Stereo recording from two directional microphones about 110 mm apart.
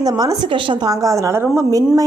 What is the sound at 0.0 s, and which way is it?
Speech, 35° right (ahead or behind).